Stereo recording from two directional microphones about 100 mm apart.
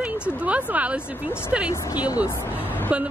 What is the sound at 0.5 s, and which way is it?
Speech, 15° right (ahead or behind).